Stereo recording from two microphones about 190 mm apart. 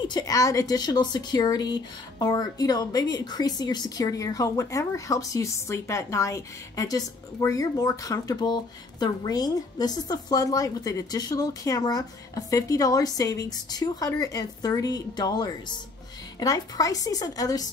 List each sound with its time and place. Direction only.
0.0 s speech: 20° left (ahead or behind)